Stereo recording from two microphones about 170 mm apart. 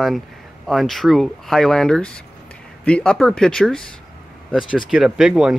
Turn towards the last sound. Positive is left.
turn(degrees=-5)  # may be behind; listen again after turning